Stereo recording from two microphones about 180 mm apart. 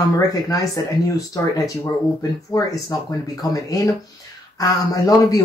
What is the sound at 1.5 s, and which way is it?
A man's voice, 20° left (ahead or behind).